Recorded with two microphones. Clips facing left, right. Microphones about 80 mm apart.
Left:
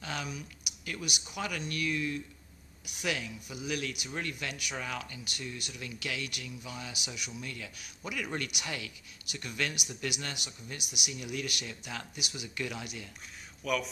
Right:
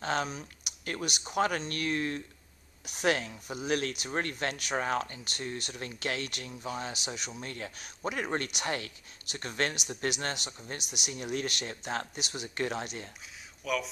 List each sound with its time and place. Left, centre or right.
0.0 s speech: right
2.8 s speech: right
13.6 s speech: centre